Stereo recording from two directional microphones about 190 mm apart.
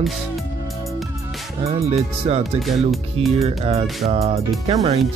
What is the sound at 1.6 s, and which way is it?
Speech, 30° right (ahead or behind).